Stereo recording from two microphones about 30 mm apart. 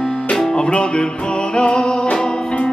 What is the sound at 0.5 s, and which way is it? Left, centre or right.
Music, left.